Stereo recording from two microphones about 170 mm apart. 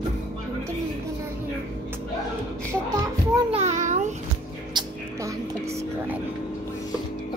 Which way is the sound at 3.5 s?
40° right (ahead or behind).